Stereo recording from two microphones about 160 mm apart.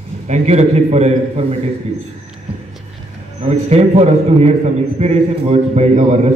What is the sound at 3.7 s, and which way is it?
A man's voice, 40° right (ahead or behind).